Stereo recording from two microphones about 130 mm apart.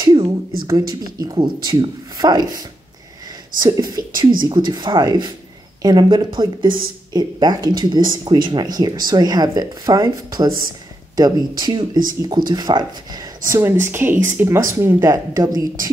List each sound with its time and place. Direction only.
0.0 s a sound: 25° right (ahead or behind)
0.7 s speech: 30° right (ahead or behind)
13.6 s speech: 20° right (ahead or behind)